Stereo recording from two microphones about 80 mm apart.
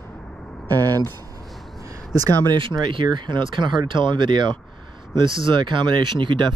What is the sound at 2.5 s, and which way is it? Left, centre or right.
Speech, right.